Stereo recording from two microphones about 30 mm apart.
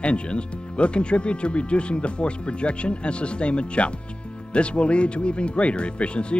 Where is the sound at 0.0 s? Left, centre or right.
Left.